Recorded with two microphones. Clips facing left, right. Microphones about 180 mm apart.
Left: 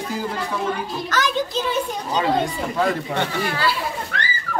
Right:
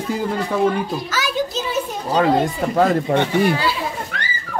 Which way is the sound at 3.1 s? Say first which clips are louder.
Right 7 dB; 15° right (ahead or behind).